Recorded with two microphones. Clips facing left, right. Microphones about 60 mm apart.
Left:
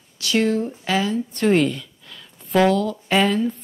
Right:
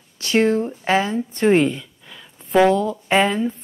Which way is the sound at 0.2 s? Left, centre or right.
Right.